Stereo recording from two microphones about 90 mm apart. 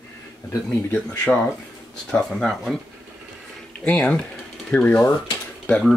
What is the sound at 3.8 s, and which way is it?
Speech, 15° left (ahead or behind).